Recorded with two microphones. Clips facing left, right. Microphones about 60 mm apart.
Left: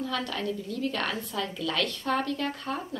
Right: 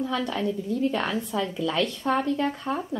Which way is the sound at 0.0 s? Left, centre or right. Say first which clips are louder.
Right 4 dB; right.